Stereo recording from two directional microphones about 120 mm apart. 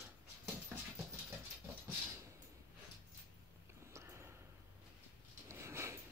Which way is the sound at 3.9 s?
20° right (ahead or behind).